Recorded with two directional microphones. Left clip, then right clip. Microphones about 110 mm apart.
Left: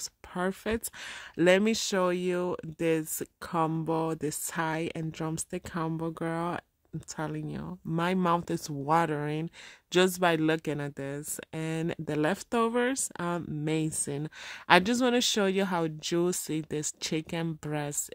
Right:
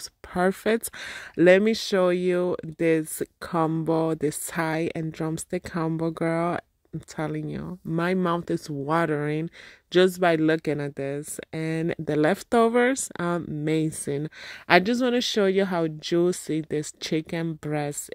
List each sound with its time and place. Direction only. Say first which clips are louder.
0.3 s speech: right 8 dB; 50° right (ahead or behind)
1.3 s speech: right 6 dB; 25° right (ahead or behind)
9.8 s speech: right 5 dB; 15° right (ahead or behind); by 12.4 s 30° right (ahead or behind)
12.4 s speech: right 9 dB; 50° right (ahead or behind); by 14.3 s 30° right (ahead or behind)
14.7 s speech: right 3 dB; 10° right (ahead or behind)